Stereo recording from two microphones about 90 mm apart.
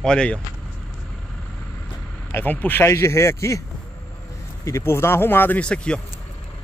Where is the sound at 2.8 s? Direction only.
35° left (ahead or behind).